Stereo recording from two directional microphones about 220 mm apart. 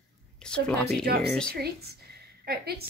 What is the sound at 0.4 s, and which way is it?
Speech, 5° left (ahead or behind).